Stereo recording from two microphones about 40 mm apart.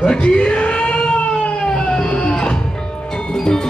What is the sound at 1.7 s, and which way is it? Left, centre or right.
Music, centre.